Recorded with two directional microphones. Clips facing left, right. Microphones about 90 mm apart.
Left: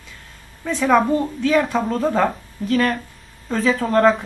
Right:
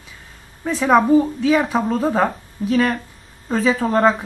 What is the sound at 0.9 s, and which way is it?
Speech, 5° right (ahead or behind).